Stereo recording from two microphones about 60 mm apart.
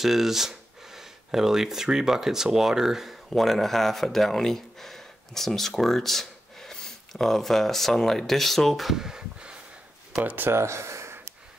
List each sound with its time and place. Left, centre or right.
0.0 s speech: centre
10.2 s speech: right
10.5 s gasp: right